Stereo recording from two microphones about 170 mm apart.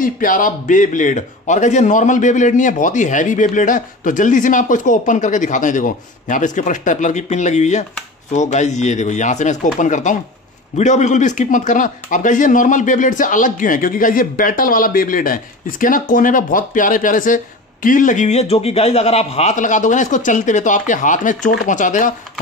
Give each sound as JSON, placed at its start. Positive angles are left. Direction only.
{"t": 0.0, "sound": "a man's voice", "side_deg": 55}